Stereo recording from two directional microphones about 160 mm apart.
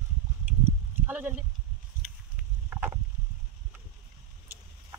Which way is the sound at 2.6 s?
10° right (ahead or behind).